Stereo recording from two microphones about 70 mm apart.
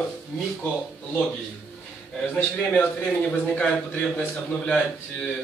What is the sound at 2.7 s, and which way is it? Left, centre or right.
A man's voice, left.